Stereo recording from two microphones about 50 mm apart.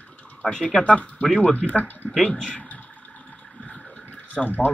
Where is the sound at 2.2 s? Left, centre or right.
Centre.